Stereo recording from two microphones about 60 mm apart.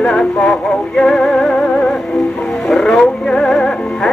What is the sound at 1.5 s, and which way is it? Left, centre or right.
Music, centre.